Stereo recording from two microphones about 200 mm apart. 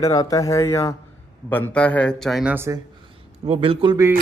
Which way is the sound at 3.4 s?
30° right (ahead or behind).